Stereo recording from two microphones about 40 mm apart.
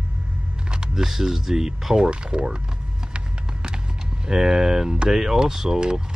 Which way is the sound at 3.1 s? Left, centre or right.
Centre.